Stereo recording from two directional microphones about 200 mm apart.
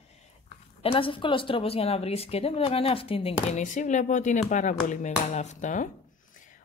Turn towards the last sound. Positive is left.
turn(degrees=40)  # may be behind; listen again after turning